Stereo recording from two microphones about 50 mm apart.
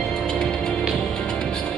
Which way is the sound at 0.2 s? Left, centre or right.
Centre.